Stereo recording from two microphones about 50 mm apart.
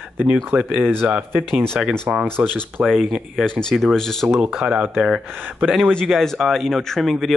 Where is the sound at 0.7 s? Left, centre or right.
Right.